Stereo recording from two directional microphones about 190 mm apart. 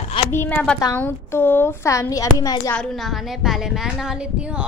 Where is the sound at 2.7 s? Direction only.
Centre (ahead or behind).